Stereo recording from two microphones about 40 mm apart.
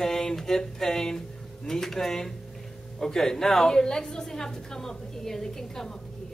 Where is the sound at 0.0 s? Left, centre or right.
Centre.